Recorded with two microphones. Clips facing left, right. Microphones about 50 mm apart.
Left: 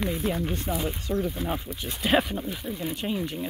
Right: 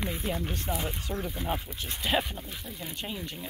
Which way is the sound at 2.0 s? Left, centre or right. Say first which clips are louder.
Left 6 dB; left.